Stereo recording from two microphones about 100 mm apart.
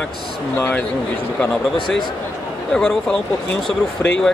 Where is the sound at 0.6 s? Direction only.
20° left (ahead or behind).